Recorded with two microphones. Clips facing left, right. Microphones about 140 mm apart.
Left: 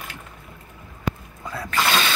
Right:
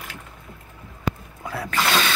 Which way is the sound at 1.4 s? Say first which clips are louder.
Right 2 dB; 5° right (ahead or behind).